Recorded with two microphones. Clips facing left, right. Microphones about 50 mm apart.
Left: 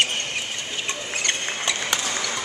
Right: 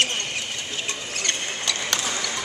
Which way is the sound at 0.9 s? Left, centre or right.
Centre.